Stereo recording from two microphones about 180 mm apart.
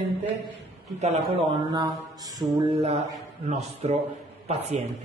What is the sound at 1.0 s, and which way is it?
Speech, 35° right (ahead or behind).